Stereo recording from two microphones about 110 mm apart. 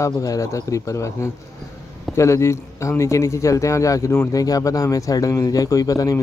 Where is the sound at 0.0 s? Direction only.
30° left (ahead or behind).